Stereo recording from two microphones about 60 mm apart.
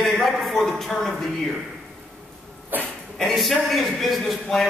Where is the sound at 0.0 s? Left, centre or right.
Centre.